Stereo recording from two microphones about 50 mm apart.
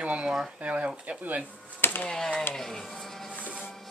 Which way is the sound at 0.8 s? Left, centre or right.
Centre.